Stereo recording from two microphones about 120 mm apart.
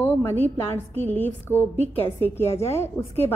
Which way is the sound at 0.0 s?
15° left (ahead or behind).